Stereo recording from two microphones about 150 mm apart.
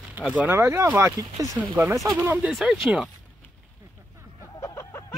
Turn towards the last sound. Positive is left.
turn(degrees=20)  # may be behind; listen again after turning